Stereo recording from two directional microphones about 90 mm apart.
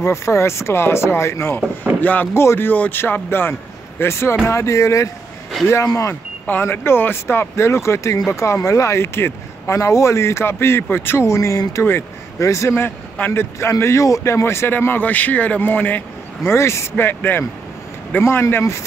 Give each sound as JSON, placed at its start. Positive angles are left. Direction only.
{"t": 0.0, "sound": "speech", "side_deg": 30}
{"t": 2.0, "sound": "speech", "side_deg": 20}
{"t": 6.4, "sound": "speech", "side_deg": 20}
{"t": 16.4, "sound": "speech", "side_deg": 30}